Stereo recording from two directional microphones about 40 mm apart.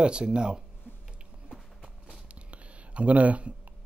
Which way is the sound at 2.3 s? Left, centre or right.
Right.